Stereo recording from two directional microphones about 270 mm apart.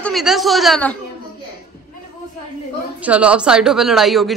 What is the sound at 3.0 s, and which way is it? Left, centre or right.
Speech, centre.